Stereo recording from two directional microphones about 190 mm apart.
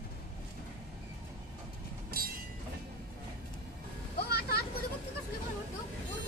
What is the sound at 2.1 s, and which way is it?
Train, 50° right (ahead or behind).